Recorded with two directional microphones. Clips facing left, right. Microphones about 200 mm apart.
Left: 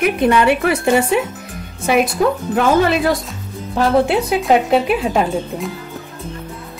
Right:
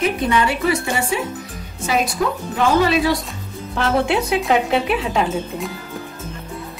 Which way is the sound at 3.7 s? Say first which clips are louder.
Left 4 dB; 35° left (ahead or behind).